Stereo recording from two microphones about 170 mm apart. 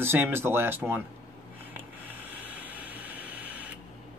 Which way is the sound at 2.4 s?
10° right (ahead or behind).